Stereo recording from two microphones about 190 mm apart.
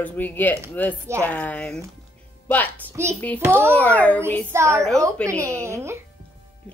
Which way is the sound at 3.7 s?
5° left (ahead or behind).